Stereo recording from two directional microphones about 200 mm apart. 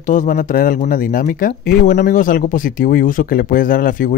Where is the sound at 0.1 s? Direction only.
40° left (ahead or behind).